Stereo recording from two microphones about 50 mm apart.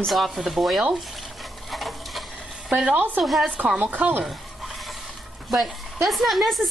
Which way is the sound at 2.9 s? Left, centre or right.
Right.